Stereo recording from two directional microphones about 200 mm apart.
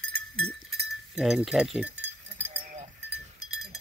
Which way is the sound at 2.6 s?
35° right (ahead or behind).